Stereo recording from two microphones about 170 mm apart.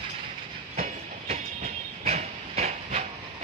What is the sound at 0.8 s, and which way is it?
Train, 35° right (ahead or behind).